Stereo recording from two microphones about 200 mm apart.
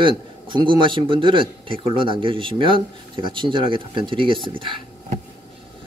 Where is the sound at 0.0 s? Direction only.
25° right (ahead or behind).